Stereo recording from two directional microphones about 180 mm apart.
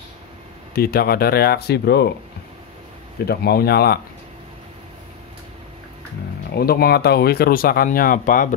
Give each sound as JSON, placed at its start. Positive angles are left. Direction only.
{"t": 0.7, "sound": "speech", "side_deg": 55}
{"t": 3.3, "sound": "speech", "side_deg": 60}
{"t": 6.5, "sound": "speech", "side_deg": 60}